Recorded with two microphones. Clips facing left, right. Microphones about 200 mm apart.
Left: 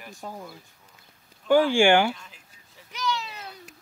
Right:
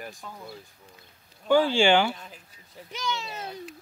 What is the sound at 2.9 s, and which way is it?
Speech, 25° right (ahead or behind).